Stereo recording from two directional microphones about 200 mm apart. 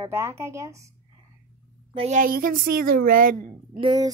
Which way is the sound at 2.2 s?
45° right (ahead or behind).